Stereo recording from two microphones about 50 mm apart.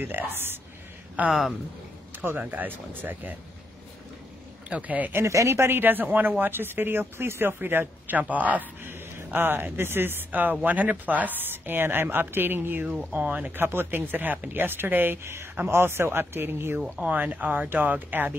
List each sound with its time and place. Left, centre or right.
0.3 s speech: right
1.2 s speech: right
4.6 s speech: right
5.2 s speech: right
5.8 s speech: right
8.2 s speech: right
13.1 s speech: right
13.6 s speech: right
15.7 s speech: right
17.0 s speech: right